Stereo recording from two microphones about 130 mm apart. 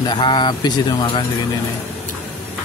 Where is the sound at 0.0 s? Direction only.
35° left (ahead or behind).